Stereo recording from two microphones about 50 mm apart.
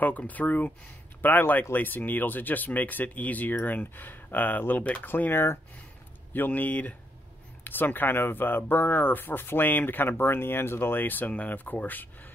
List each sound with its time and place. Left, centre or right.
0.3 s speech: left
5.0 s speech: left
6.3 s speech: left